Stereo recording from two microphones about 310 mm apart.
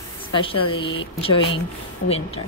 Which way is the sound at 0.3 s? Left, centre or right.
Centre.